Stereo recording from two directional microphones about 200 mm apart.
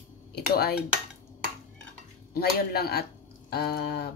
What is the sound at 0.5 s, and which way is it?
Speech, 50° left (ahead or behind).